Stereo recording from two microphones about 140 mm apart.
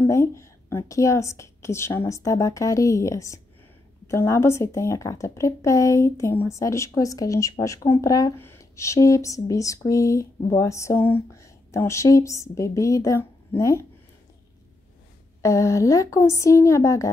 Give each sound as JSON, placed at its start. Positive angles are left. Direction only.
{"t": 0.0, "sound": "speech", "side_deg": 20}
{"t": 15.4, "sound": "speech", "side_deg": 20}